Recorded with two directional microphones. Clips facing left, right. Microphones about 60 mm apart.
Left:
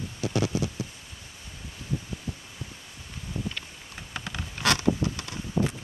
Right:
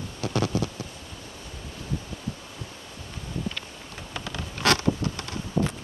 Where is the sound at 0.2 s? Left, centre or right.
Centre.